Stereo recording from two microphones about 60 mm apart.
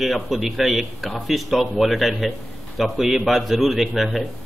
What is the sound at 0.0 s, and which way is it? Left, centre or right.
A man's voice, centre.